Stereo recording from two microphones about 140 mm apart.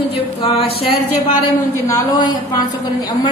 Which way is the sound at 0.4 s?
40° left (ahead or behind).